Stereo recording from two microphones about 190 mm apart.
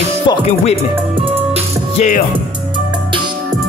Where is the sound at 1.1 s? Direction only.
30° right (ahead or behind).